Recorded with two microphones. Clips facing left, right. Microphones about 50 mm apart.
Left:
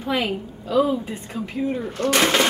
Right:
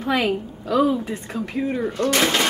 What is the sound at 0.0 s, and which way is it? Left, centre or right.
Speech, right.